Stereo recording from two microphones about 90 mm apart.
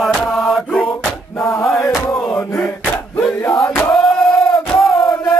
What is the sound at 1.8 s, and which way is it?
Battle cry, 30° left (ahead or behind).